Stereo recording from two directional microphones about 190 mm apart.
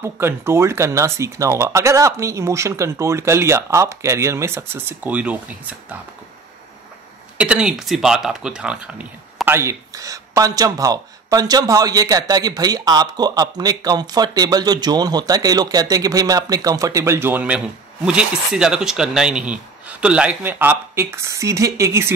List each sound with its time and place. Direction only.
0.0 s speech: 15° right (ahead or behind)
7.3 s speech: 5° right (ahead or behind)